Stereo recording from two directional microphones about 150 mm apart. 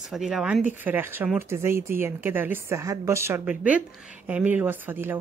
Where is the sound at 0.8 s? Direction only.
15° right (ahead or behind).